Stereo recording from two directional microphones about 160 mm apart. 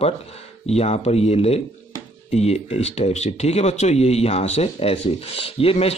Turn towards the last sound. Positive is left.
turn(degrees=40)  # may be behind; listen again after turning